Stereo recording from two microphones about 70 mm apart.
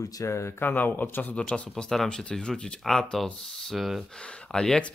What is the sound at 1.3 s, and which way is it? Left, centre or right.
Speech, centre.